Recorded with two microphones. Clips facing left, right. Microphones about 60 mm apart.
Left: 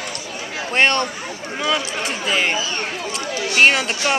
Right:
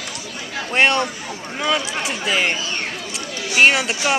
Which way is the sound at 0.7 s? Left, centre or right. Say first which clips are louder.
Even; centre.